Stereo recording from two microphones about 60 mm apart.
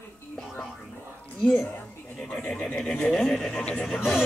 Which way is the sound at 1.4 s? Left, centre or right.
Left.